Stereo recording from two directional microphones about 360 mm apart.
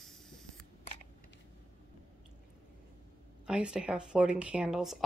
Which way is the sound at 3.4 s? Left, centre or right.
Centre.